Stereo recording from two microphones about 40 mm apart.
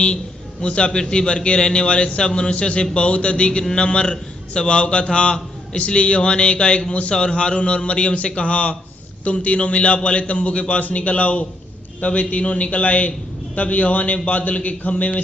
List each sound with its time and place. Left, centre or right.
0.0 s a man's voice: left